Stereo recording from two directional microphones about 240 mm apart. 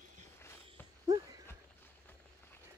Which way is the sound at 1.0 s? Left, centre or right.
Centre.